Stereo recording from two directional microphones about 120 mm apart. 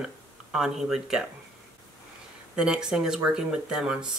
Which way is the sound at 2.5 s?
5° right (ahead or behind).